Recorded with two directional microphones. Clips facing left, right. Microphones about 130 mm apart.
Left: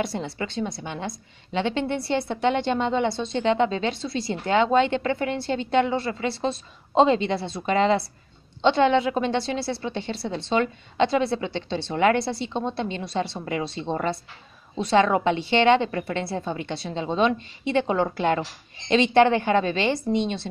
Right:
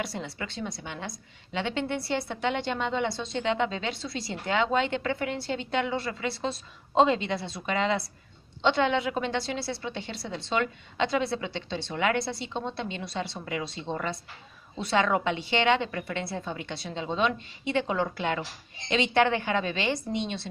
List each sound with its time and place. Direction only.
0.1 s a woman's voice: 25° left (ahead or behind)